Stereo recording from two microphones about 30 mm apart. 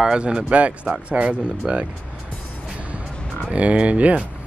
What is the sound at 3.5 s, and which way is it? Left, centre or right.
Speech, right.